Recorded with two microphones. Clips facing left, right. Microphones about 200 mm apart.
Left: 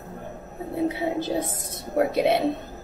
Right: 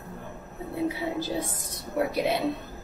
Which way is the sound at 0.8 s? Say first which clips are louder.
Left 4 dB; 25° left (ahead or behind).